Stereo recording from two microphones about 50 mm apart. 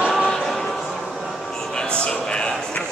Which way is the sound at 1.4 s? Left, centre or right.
Centre.